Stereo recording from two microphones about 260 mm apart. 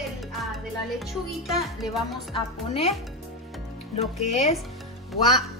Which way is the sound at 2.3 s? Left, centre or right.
Left.